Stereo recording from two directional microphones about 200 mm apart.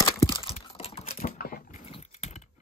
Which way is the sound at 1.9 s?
35° left (ahead or behind).